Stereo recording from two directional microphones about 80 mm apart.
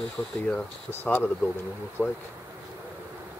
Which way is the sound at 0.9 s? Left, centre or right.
Left.